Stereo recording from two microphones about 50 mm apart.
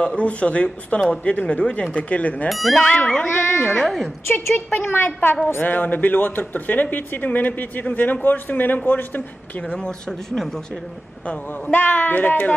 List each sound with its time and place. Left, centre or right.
0.0 s speech: left
2.5 s speech: centre
2.8 s speech: centre
3.3 s speech: left
3.6 s speech: centre
4.3 s a woman's voice: left
9.7 s speech: centre
11.2 s speech: left